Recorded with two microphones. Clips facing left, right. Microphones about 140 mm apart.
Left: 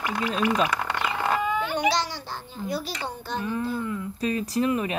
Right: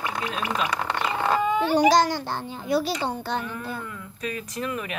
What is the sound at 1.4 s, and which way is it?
Speech, 30° right (ahead or behind).